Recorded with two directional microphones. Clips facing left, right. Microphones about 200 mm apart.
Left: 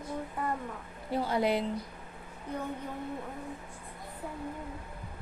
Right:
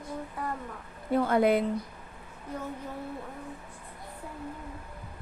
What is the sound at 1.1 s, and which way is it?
Speech, 55° right (ahead or behind).